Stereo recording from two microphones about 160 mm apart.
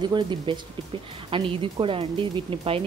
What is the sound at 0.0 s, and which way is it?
Speech, 30° right (ahead or behind).